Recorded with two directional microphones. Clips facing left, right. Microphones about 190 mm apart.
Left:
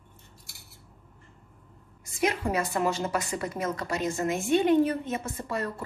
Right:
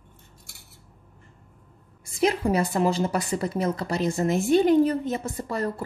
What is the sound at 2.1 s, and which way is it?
A woman's voice, 30° right (ahead or behind).